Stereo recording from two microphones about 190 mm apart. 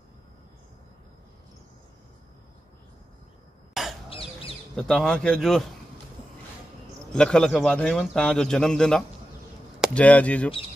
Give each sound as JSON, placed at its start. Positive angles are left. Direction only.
{"t": 4.1, "sound": "bird", "side_deg": 30}
{"t": 4.7, "sound": "a man's voice", "side_deg": 0}
{"t": 7.1, "sound": "a man's voice", "side_deg": 5}